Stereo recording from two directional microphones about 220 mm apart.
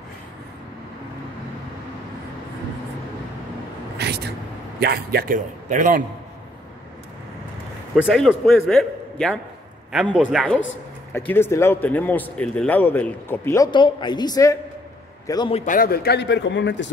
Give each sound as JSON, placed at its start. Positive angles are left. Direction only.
{"t": 4.0, "sound": "vehicle", "side_deg": -45}
{"t": 4.7, "sound": "a man's voice", "side_deg": -45}
{"t": 7.9, "sound": "a man's voice", "side_deg": 0}
{"t": 15.6, "sound": "a man's voice", "side_deg": 40}